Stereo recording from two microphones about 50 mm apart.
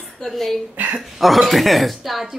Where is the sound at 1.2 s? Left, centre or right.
Centre.